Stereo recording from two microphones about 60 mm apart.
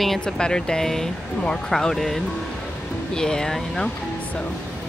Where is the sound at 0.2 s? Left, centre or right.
Centre.